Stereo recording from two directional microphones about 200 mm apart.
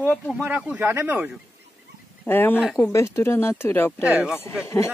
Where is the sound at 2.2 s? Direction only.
10° left (ahead or behind).